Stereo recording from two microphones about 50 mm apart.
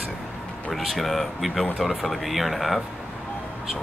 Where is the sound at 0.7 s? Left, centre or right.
Centre.